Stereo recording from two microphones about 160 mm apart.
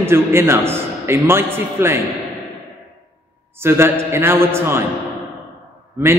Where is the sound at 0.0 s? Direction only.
15° right (ahead or behind).